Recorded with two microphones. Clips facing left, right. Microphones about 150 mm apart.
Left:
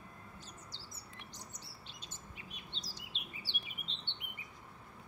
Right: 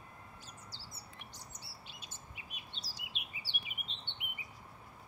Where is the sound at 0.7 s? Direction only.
10° right (ahead or behind).